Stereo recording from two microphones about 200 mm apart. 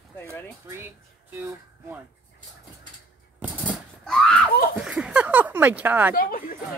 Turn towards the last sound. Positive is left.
turn(degrees=45)  # may be behind; listen again after turning